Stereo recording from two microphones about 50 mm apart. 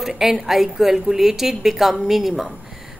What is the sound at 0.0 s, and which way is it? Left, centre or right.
A woman's voice, centre.